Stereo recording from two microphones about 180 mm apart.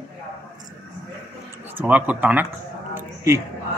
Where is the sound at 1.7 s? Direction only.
10° right (ahead or behind).